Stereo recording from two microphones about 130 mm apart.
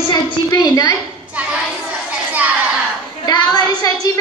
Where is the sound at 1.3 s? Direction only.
10° right (ahead or behind).